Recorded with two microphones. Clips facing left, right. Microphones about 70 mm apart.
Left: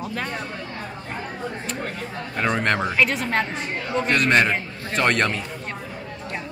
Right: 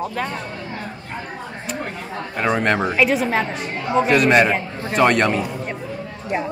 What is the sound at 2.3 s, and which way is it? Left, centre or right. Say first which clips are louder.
Speech: right 3 dB; centre.